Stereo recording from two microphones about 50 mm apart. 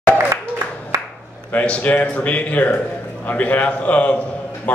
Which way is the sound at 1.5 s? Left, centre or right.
Left.